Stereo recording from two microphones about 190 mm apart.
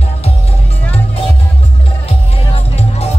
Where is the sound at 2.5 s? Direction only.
30° left (ahead or behind).